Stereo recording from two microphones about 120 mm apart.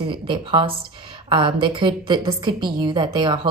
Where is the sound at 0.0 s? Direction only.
45° right (ahead or behind).